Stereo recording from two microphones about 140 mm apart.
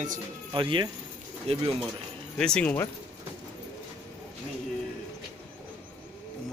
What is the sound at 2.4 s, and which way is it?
Speech, 5° left (ahead or behind).